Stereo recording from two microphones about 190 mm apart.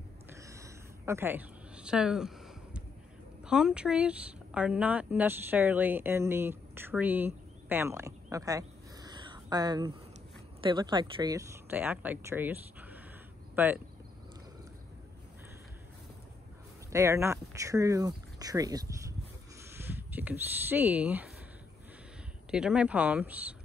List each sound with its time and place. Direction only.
0.3 s a sound: 15° right (ahead or behind)
3.4 s speech: 5° right (ahead or behind)
16.9 s speech: 15° right (ahead or behind)
22.5 s speech: 5° right (ahead or behind)